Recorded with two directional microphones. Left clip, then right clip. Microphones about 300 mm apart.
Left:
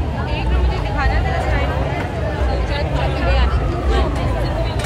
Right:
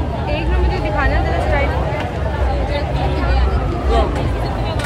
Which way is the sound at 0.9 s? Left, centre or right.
Right.